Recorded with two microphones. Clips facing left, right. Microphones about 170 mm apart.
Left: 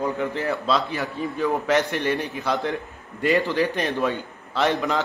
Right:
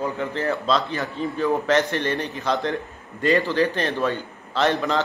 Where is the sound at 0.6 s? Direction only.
10° left (ahead or behind).